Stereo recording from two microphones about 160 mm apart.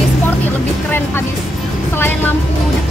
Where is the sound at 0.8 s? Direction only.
15° left (ahead or behind).